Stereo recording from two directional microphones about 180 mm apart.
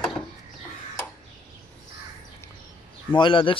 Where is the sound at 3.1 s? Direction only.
25° left (ahead or behind).